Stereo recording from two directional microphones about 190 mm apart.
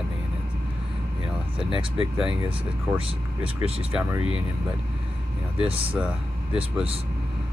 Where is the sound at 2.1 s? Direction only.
5° right (ahead or behind).